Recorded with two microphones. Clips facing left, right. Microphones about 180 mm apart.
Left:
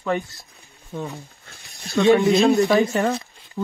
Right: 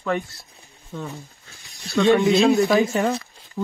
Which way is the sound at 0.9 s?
20° left (ahead or behind).